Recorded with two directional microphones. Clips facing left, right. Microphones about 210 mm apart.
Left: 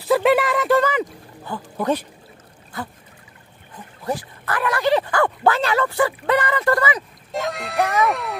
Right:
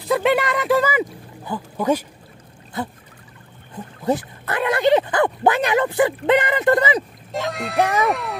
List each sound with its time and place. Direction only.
0.1 s speech: centre (ahead or behind)
4.0 s speech: 20° right (ahead or behind)
7.3 s speech: centre (ahead or behind)